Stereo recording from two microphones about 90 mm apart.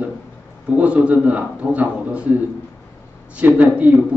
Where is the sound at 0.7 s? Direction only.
15° right (ahead or behind).